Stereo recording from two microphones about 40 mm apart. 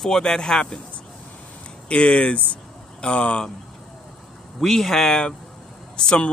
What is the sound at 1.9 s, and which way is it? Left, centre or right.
Speech, left.